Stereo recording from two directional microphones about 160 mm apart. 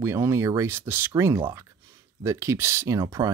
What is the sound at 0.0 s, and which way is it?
Speech, 15° right (ahead or behind).